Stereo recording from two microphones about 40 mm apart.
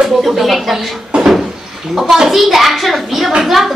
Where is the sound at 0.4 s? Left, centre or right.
Centre.